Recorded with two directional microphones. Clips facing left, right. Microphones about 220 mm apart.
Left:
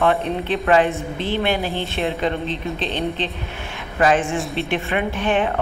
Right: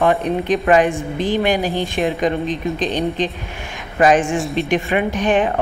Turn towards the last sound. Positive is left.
turn(degrees=-15)  # may be behind; listen again after turning